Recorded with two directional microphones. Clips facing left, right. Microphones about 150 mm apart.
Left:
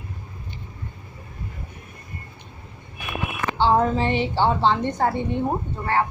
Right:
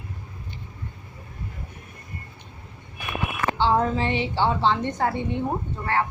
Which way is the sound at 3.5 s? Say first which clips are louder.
Left 3 dB; 35° left (ahead or behind).